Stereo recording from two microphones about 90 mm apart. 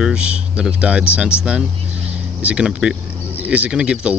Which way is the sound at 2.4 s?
10° right (ahead or behind).